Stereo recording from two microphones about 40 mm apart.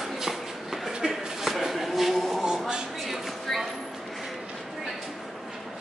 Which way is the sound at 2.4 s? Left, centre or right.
Centre.